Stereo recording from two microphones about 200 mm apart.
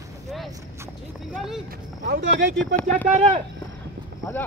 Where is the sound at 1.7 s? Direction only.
55° right (ahead or behind).